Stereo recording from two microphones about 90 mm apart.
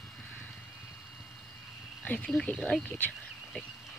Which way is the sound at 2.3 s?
5° left (ahead or behind).